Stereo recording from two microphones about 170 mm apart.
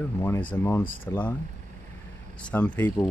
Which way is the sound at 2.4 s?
10° left (ahead or behind).